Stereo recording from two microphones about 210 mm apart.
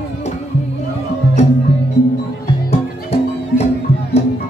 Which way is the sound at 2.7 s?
30° left (ahead or behind).